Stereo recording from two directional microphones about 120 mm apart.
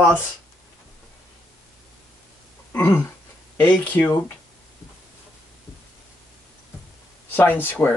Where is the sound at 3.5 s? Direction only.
15° left (ahead or behind).